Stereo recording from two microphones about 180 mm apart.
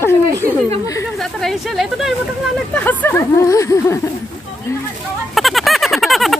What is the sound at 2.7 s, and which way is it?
Speech, 10° left (ahead or behind).